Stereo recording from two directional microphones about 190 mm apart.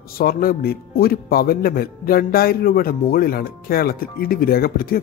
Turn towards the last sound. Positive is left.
turn(degrees=50)  # may be behind; listen again after turning